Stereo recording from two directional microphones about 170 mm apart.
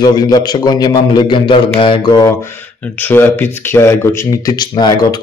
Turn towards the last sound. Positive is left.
turn(degrees=25)  # may be behind; listen again after turning